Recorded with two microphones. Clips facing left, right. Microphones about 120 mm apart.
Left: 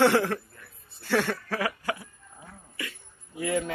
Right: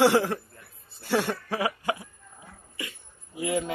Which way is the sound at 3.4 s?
15° right (ahead or behind).